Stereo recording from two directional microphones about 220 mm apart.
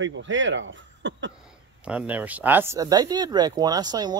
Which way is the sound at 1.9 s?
5° right (ahead or behind).